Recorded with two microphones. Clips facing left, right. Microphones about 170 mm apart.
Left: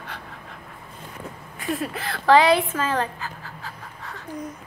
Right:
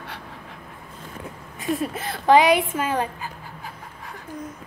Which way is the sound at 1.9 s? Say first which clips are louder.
Even; 20° right (ahead or behind).